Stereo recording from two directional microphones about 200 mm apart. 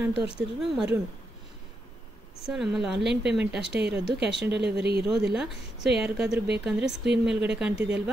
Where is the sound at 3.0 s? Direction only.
60° right (ahead or behind).